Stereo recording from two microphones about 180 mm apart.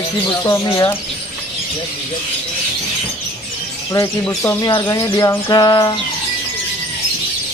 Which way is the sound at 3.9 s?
20° left (ahead or behind).